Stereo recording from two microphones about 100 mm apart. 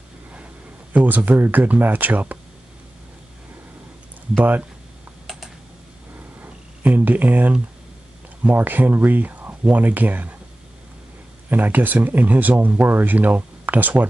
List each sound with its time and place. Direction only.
0.9 s speech: 15° right (ahead or behind)
4.4 s speech: 15° right (ahead or behind)
5.2 s typing: centre (ahead or behind)
6.1 s a sound: 20° right (ahead or behind)
8.5 s speech: 15° right (ahead or behind)
11.4 s speech: 20° right (ahead or behind)